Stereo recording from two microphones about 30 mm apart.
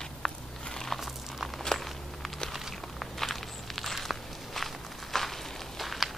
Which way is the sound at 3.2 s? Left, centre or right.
Centre.